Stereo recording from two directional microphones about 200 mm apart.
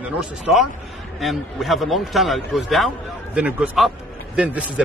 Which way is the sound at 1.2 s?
Centre (ahead or behind).